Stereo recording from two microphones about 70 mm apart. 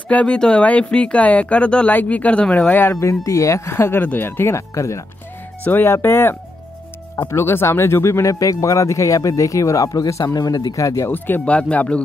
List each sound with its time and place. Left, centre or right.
0.1 s speech: centre
2.7 s speech: left
5.6 s speech: left
5.9 s speech: left
10.2 s speech: left
11.1 s speech: left